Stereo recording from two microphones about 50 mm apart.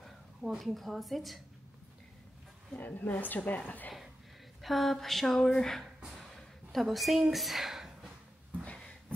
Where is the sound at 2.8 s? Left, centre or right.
Left.